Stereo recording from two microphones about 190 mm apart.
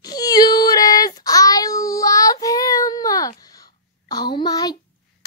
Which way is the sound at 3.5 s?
20° left (ahead or behind).